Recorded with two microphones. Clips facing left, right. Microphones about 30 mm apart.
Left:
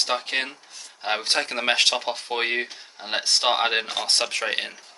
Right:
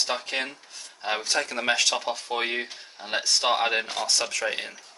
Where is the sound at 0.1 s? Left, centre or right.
Left.